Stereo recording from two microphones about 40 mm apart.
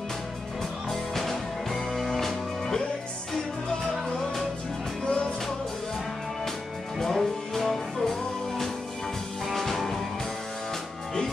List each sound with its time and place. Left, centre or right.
0.8 s music: centre
5.0 s music: centre
7.0 s music: centre